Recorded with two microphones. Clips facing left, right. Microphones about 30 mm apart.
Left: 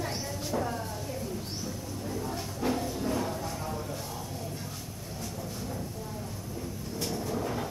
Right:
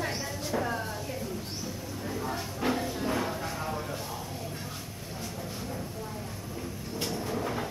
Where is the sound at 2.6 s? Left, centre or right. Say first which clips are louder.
Even; right.